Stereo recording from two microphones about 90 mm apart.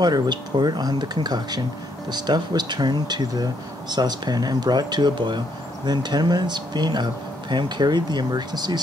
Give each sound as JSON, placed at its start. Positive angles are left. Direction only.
{"t": 0.0, "sound": "speech", "side_deg": -50}
{"t": 5.9, "sound": "speech", "side_deg": -50}